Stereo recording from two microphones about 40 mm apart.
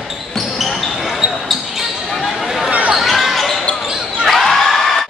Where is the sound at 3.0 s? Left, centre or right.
Centre.